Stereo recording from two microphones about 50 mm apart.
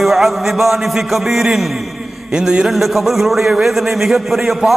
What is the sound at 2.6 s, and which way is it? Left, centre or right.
A man's voice, centre.